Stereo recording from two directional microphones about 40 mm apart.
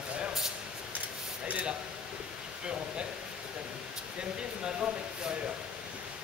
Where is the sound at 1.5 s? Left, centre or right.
Right.